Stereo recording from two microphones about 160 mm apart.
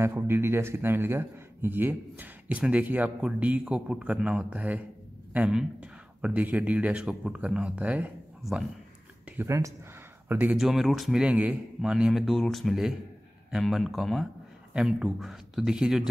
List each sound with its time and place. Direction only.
0.0 s a man's voice: 15° right (ahead or behind)
9.4 s speech: 20° right (ahead or behind); by 16.1 s 5° right (ahead or behind)